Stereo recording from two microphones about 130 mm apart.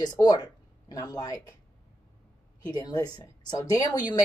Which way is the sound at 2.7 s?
30° left (ahead or behind).